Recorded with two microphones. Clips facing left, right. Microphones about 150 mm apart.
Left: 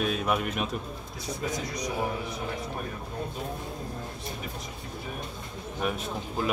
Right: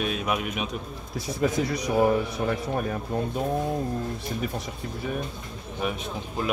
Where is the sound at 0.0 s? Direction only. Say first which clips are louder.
Even; 5° right (ahead or behind).